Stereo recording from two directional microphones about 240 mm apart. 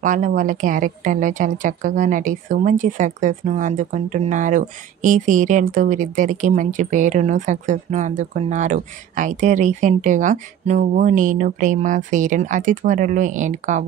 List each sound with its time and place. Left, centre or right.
0.0 s a woman's voice: right